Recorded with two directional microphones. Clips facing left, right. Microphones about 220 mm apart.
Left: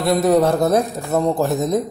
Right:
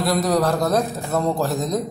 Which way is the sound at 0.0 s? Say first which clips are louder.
Left 4 dB; 25° left (ahead or behind).